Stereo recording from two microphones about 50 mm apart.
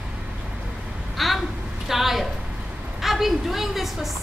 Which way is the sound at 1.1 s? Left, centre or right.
Centre.